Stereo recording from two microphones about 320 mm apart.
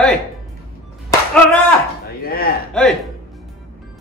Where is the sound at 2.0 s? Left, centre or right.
Left.